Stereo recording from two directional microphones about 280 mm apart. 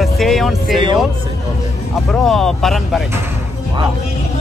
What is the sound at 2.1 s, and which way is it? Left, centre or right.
Speech, centre.